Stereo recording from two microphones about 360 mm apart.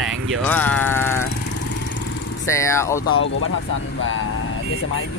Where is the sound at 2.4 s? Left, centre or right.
Centre.